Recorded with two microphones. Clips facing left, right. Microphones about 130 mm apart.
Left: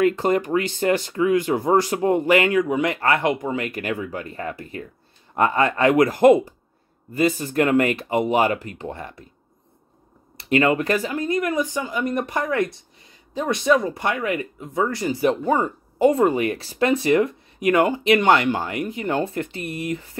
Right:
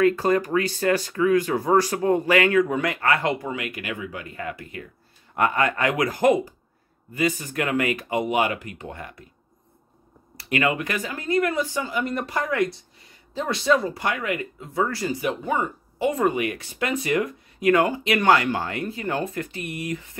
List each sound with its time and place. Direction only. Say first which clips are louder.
0.0 s speech: even; 20° left (ahead or behind)
3.4 s speech: left 5 dB; 35° left (ahead or behind)
10.3 s speech: left 5 dB; 30° left (ahead or behind)
15.2 s speech: left 7 dB; 35° left (ahead or behind)